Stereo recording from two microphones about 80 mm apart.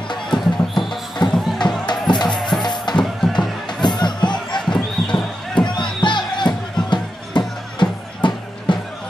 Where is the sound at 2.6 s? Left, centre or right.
Left.